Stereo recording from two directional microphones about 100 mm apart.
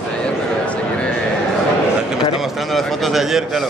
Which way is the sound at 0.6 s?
10° left (ahead or behind).